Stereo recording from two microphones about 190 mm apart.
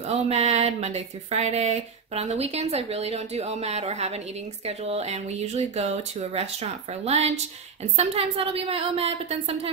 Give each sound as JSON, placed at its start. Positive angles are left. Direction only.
{"t": 0.1, "sound": "speech", "side_deg": -35}